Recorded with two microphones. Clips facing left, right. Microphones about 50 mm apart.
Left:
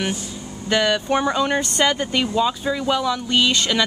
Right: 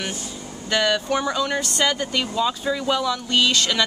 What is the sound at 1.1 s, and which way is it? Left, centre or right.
Speech, left.